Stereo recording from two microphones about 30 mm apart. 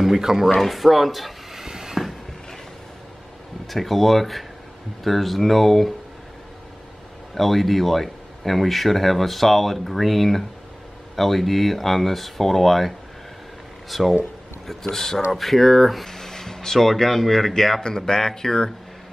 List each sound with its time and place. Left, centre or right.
0.0 s speech: centre
0.5 s speech: centre
1.6 s a sound: centre
3.6 s speech: centre
7.3 s speech: centre
14.7 s speech: centre
16.1 s speech: centre
17.8 s speech: left